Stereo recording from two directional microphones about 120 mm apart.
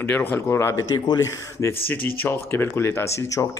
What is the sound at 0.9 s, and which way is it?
Speech, 35° left (ahead or behind).